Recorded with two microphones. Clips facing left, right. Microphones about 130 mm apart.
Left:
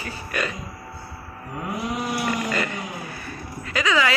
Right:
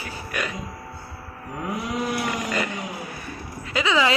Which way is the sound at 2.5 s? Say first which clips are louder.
Even; 10° right (ahead or behind).